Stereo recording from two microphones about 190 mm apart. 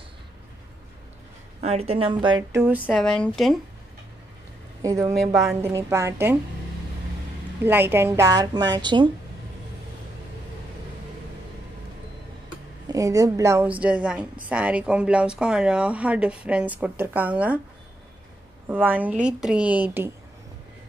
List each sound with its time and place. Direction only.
1.6 s a woman's voice: 35° right (ahead or behind)
2.5 s speech: 10° right (ahead or behind)
4.8 s a woman's voice: 15° right (ahead or behind)
7.6 s a woman's voice: 10° right (ahead or behind)
12.8 s a woman's voice: 20° right (ahead or behind)
18.7 s a woman's voice: 10° right (ahead or behind)